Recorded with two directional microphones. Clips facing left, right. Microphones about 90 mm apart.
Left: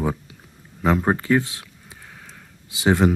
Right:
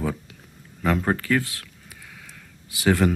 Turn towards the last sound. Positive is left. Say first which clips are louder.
# left 2 dB
turn(degrees=20)  # may be behind; listen again after turning